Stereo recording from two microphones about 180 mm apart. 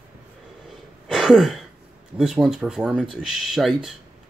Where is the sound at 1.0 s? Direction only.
Centre (ahead or behind).